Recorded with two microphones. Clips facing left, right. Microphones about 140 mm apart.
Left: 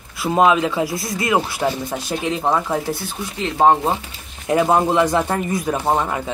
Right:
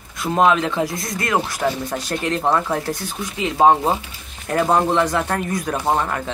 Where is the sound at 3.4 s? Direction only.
5° right (ahead or behind).